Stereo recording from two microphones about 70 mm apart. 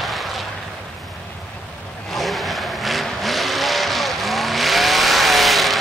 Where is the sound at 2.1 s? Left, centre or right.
Centre.